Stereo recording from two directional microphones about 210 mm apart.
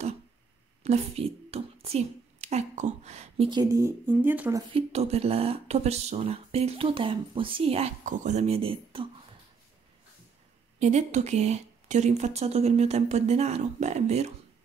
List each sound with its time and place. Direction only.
0.8 s a woman's voice: 30° right (ahead or behind)
10.8 s speech: 35° right (ahead or behind)